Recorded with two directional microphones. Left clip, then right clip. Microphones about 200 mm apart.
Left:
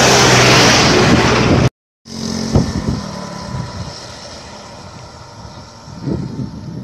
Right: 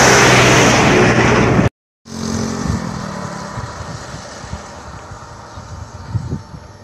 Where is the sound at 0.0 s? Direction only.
40° left (ahead or behind).